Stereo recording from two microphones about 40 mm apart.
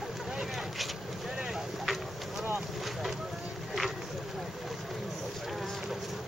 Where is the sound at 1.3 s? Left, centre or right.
Centre.